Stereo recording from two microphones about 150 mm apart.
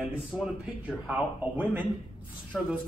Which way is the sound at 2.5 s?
10° left (ahead or behind).